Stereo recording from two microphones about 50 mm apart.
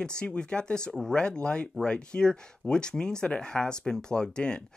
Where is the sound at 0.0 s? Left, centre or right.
Centre.